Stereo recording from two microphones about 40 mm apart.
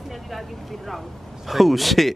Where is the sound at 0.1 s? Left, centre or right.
Centre.